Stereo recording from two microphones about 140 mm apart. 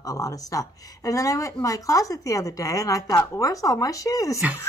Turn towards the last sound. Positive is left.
turn(degrees=25)  # may be behind; listen again after turning